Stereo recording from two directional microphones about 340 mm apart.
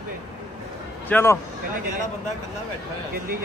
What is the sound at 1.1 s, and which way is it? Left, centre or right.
Speech, centre.